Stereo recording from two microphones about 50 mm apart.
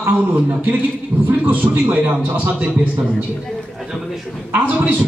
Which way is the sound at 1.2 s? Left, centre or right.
Right.